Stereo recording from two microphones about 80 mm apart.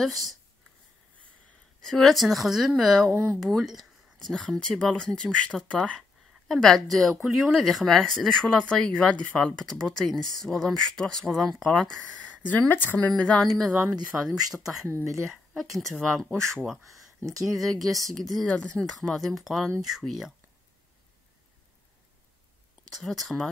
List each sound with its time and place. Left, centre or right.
1.8 s speech: centre
12.2 s a woman's voice: centre
12.9 s speech: centre
13.7 s speech: centre
14.1 s speech: centre
14.9 s speech: right
15.7 s speech: centre
17.2 s speech: right
17.6 s speech: centre
22.8 s speech: centre